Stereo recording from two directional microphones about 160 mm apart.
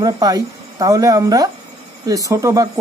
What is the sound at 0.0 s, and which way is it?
Speech, 25° right (ahead or behind).